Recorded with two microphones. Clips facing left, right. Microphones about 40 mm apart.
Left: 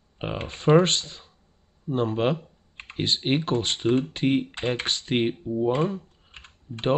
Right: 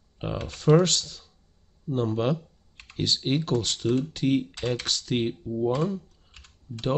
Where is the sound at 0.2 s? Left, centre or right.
Left.